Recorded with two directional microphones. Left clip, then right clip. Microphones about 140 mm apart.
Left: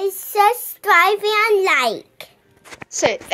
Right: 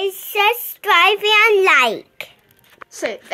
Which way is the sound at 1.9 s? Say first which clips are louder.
Right 3 dB; 20° right (ahead or behind).